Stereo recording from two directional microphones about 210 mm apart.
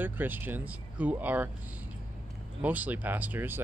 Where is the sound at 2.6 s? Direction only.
5° right (ahead or behind).